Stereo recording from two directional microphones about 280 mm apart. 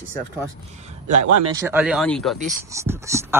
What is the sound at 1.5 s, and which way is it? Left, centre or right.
A man's voice, centre.